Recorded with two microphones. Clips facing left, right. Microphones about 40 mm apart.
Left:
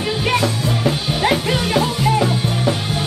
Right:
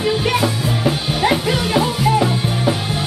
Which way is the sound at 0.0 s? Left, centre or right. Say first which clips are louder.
Right 1 dB; centre.